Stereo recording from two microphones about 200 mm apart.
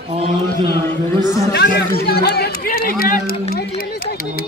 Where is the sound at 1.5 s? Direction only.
55° left (ahead or behind).